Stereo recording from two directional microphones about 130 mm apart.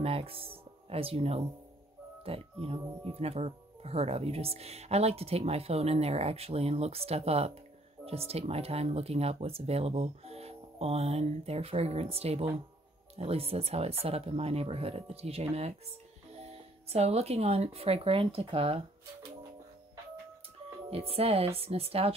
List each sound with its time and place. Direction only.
0.0 s speech: 45° right (ahead or behind)
20.9 s speech: 50° right (ahead or behind)